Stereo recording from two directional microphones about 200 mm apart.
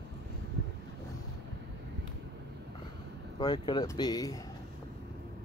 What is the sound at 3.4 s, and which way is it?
Speech, 20° left (ahead or behind).